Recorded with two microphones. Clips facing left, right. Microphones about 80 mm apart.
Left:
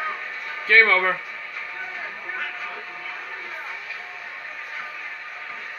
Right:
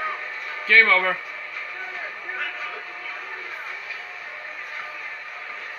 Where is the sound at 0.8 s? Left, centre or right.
Centre.